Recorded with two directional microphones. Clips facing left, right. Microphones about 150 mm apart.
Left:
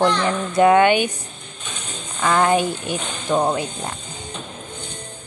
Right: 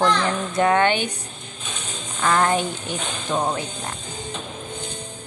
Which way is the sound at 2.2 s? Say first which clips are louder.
Left 3 dB; 15° left (ahead or behind).